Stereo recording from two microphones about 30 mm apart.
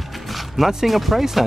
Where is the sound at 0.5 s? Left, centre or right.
Centre.